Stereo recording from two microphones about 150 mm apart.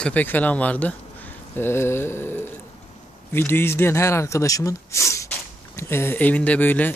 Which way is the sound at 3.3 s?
15° left (ahead or behind).